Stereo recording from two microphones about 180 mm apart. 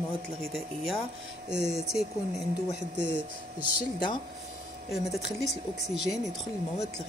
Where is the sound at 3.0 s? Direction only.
85° right.